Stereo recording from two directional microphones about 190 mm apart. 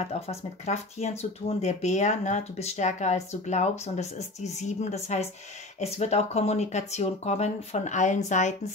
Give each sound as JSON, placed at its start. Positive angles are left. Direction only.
{"t": 0.3, "sound": "speech", "side_deg": 35}